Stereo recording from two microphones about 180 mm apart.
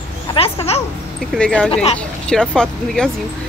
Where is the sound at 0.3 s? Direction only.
35° left (ahead or behind).